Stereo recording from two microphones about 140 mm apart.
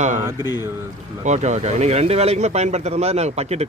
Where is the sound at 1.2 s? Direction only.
55° right (ahead or behind).